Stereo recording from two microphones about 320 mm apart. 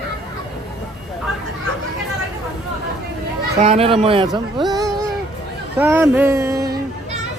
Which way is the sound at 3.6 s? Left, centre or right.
Centre.